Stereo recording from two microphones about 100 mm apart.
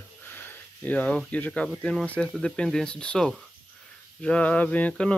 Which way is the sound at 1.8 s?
10° left (ahead or behind).